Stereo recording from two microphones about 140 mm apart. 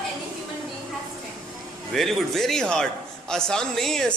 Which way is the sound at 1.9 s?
Centre (ahead or behind).